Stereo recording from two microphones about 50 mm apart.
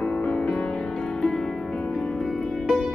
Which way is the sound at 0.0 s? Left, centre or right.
Left.